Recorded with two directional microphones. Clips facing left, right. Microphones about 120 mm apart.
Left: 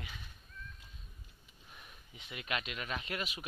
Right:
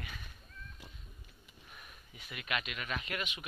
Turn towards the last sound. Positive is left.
turn(degrees=35)  # may be behind; listen again after turning